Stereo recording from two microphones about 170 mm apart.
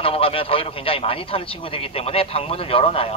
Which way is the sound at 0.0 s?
35° left (ahead or behind).